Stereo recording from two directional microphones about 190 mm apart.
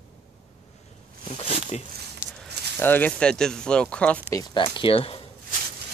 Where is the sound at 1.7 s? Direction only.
35° left (ahead or behind).